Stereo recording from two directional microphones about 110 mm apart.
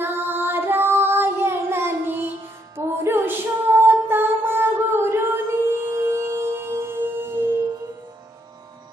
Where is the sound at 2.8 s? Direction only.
25° right (ahead or behind).